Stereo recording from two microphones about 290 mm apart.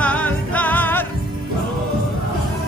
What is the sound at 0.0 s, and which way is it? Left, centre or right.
Music, centre.